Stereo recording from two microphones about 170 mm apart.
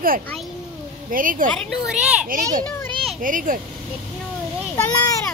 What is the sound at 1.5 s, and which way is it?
Speech, 5° left (ahead or behind).